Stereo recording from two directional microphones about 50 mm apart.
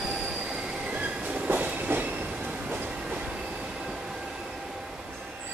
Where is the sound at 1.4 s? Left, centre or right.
Right.